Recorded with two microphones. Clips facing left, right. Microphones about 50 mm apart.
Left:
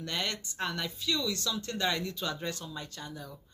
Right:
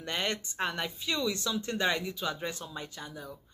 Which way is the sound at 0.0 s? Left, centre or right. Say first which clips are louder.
Right 2 dB; right.